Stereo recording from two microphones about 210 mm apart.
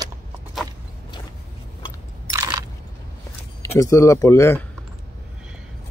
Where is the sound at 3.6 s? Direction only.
15° left (ahead or behind).